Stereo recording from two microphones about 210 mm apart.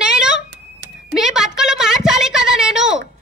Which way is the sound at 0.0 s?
5° right (ahead or behind).